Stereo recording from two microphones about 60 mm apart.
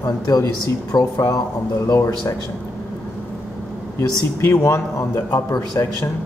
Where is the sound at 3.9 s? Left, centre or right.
Left.